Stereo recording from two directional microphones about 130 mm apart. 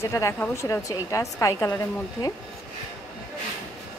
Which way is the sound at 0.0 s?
20° left (ahead or behind).